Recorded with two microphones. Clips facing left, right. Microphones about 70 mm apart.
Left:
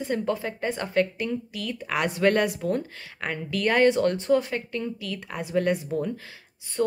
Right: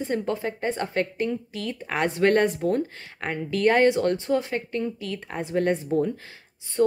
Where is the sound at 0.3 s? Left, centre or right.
Right.